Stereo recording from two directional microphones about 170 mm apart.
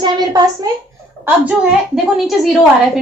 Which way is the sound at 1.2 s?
5° right (ahead or behind).